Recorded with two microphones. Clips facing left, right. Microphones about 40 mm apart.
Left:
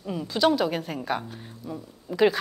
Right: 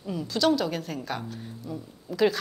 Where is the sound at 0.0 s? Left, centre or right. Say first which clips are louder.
Left 2 dB; centre.